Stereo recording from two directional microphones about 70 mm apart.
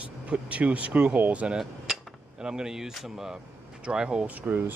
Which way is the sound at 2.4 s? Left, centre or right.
Centre.